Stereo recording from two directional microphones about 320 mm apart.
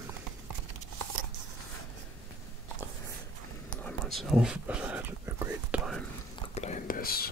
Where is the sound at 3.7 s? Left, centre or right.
Centre.